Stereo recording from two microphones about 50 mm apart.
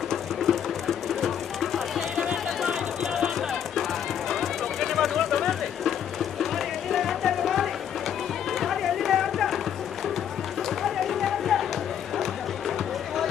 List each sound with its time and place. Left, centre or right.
0.1 s music: centre
10.8 s music: centre